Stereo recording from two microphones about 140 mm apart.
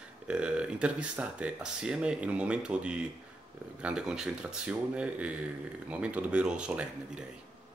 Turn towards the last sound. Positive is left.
turn(degrees=-5)  # may be behind; listen again after turning